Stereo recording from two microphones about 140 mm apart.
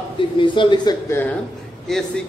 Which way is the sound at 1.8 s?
Centre (ahead or behind).